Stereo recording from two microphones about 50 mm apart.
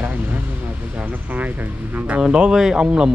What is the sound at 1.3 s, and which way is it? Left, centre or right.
Speech, right.